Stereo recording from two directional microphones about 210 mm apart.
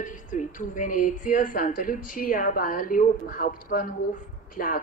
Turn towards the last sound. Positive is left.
turn(degrees=40)  # may be behind; listen again after turning